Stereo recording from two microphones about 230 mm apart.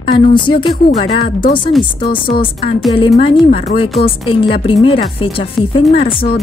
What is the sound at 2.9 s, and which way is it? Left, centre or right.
Speech, left.